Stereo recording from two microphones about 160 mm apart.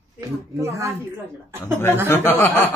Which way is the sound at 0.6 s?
20° right (ahead or behind).